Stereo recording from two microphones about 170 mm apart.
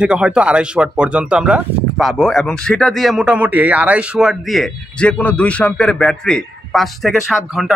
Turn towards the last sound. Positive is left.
turn(degrees=0)  # may be behind; listen again after turning